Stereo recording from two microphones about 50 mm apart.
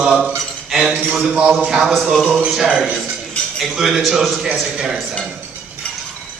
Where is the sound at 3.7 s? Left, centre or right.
Centre.